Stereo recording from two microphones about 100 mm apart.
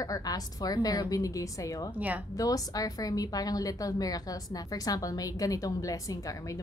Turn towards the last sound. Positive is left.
turn(degrees=35)  # may be behind; listen again after turning